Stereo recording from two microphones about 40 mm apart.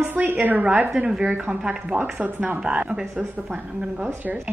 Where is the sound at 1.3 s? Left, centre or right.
Right.